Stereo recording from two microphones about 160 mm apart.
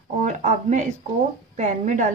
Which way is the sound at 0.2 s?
50° right (ahead or behind).